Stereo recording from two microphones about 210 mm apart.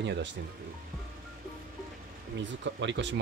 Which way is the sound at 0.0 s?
55° right (ahead or behind).